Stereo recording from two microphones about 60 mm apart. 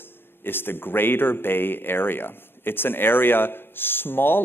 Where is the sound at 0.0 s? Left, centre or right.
Left.